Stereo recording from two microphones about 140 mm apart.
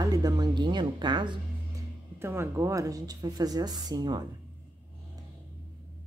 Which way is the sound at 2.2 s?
15° right (ahead or behind).